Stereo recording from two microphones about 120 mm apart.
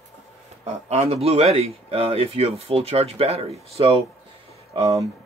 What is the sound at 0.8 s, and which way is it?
Speech, 60° right (ahead or behind).